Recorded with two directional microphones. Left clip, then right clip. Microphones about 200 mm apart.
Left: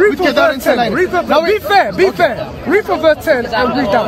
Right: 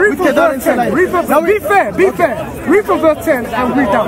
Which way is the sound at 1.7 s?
45° left (ahead or behind).